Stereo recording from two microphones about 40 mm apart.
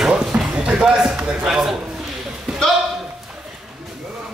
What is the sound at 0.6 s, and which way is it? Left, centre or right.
Music, right.